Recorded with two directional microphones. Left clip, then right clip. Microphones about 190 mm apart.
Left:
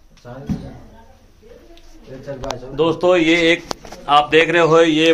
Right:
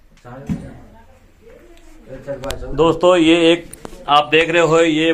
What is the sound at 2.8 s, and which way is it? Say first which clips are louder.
Speech: right 2 dB; 25° right (ahead or behind).